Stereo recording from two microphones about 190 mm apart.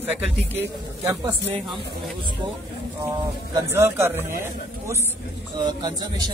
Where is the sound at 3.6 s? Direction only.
15° right (ahead or behind).